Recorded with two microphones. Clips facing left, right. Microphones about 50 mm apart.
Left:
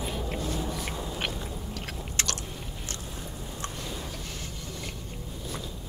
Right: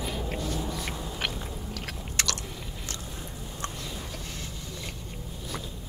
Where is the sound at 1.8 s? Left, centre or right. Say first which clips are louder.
Right 2 dB; right.